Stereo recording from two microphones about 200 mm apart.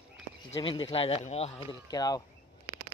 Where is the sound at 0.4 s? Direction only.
25° left (ahead or behind).